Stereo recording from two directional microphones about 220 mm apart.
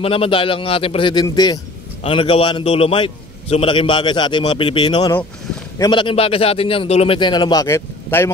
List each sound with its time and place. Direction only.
0.0 s a man's voice: 25° left (ahead or behind)